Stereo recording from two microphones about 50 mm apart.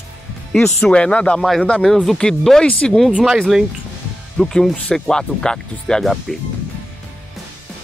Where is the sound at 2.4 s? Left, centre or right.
Centre.